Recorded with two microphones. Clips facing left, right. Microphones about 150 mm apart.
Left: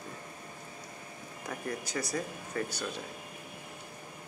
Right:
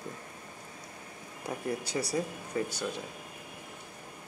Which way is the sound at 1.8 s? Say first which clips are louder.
Right 3 dB; 30° right (ahead or behind).